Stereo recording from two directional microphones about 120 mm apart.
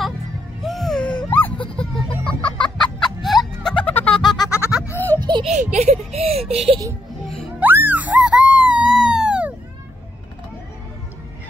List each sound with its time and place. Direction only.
0.7 s wail: centre (ahead or behind)
1.7 s music: 10° left (ahead or behind)
4.4 s goat: 25° left (ahead or behind)
4.8 s a sound: 15° left (ahead or behind)
5.4 s baby laughter: 80° right; by 6.8 s 60° right (ahead or behind)
7.6 s a sound: 15° right (ahead or behind)